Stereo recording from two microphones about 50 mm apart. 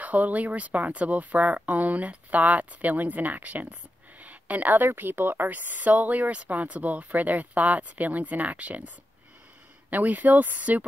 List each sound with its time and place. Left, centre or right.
0.0 s a woman's voice: right